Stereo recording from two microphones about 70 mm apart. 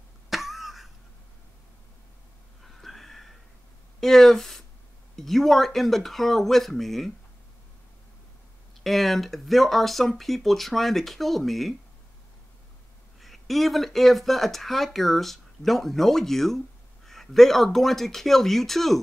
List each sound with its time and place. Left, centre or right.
0.3 s cough: centre
2.6 s a sound: centre
4.0 s speech: centre
8.8 s speech: centre
13.2 s speech: centre